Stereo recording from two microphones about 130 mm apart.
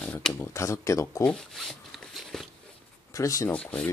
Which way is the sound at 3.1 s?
25° left (ahead or behind).